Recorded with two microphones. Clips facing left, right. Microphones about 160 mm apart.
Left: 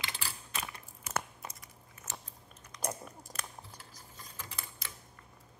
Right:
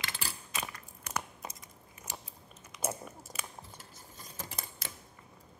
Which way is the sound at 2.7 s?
5° right (ahead or behind).